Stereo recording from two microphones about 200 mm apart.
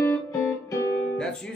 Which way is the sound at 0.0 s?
15° left (ahead or behind).